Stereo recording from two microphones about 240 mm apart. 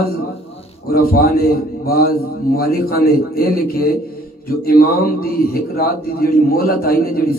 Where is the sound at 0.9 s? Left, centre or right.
Left.